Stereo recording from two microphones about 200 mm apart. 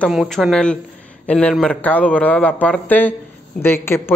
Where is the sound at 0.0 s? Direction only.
Centre (ahead or behind).